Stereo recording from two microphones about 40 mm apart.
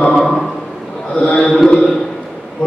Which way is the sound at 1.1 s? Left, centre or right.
Left.